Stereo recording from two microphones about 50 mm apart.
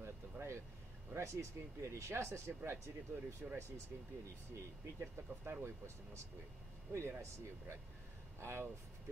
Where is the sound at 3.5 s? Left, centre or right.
Right.